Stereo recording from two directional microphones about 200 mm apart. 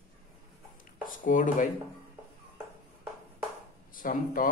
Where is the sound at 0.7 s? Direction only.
45° left (ahead or behind).